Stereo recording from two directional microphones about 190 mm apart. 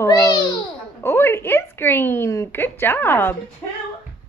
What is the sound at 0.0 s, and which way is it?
Babbling, 20° left (ahead or behind).